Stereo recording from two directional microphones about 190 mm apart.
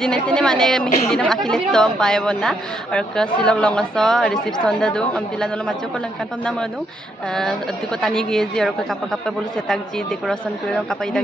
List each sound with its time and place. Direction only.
0.0 s a woman's voice: 5° left (ahead or behind)
8.0 s a woman's voice: 5° left (ahead or behind)